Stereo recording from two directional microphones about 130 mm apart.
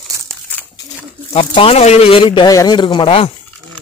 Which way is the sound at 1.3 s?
45° left (ahead or behind).